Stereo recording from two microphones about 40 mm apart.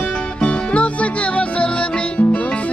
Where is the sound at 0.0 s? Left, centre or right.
Left.